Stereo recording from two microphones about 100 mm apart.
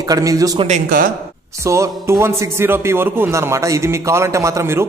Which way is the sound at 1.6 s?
30° right (ahead or behind).